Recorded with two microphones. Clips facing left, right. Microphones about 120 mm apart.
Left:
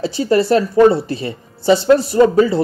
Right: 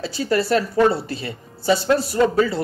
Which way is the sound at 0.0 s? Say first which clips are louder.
Left 6 dB; 20° left (ahead or behind).